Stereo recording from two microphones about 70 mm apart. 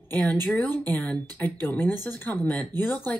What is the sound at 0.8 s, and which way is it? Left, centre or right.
Speech, left.